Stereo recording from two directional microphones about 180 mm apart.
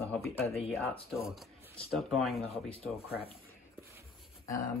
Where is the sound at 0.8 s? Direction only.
30° left (ahead or behind).